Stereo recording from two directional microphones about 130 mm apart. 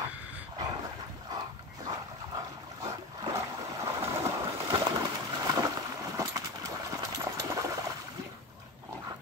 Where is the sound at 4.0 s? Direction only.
20° right (ahead or behind).